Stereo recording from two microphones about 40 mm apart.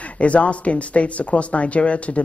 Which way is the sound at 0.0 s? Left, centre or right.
Left.